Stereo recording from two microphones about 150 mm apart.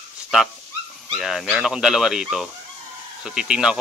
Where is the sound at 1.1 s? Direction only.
Centre (ahead or behind).